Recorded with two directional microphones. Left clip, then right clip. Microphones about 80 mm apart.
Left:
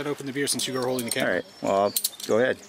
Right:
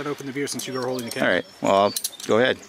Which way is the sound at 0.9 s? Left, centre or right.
Left.